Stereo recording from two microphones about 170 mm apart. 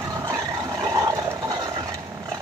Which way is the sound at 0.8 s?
25° right (ahead or behind).